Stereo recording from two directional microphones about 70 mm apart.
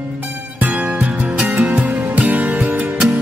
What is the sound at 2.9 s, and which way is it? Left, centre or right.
Music, centre.